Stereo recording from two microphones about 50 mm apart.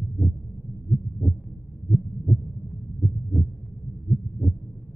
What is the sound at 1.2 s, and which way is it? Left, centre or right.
Heart murmur, left.